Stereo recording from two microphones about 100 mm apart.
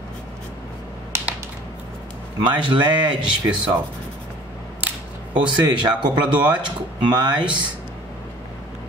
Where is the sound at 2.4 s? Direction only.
55° right (ahead or behind).